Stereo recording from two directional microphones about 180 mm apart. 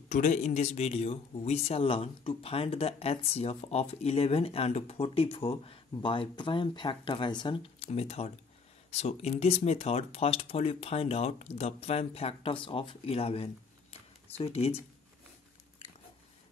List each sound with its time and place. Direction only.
0.1 s speech: 45° left (ahead or behind)